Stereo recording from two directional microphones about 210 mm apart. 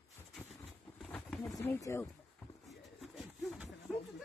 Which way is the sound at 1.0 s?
5° left (ahead or behind).